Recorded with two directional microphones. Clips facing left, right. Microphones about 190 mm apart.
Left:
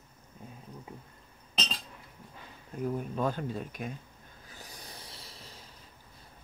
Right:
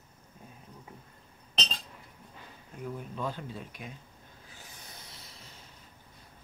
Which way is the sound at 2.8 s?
45° left (ahead or behind).